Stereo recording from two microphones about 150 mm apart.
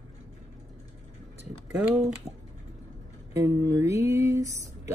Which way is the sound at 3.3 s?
20° right (ahead or behind).